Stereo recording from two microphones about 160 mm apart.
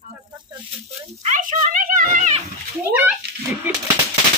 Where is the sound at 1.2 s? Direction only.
55° right (ahead or behind).